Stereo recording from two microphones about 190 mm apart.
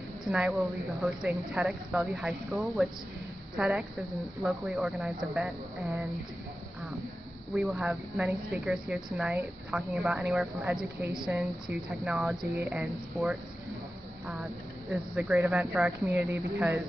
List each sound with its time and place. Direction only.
0.2 s a woman's voice: centre (ahead or behind)
7.5 s a woman's voice: 5° right (ahead or behind)
14.9 s a woman's voice: 5° right (ahead or behind)